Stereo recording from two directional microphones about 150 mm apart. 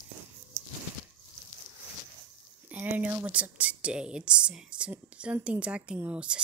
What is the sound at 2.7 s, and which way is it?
Speech, 10° right (ahead or behind).